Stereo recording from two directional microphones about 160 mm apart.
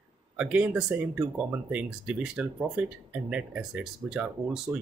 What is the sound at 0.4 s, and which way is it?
Speech, 5° right (ahead or behind).